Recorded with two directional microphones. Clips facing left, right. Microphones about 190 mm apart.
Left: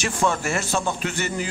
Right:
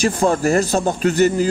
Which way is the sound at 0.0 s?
35° right (ahead or behind).